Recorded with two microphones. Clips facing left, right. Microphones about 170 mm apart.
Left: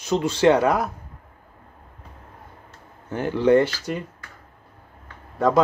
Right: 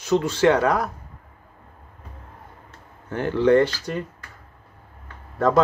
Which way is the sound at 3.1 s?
15° left (ahead or behind).